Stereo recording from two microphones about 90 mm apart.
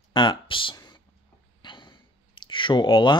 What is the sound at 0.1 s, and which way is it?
Speech, 60° left (ahead or behind).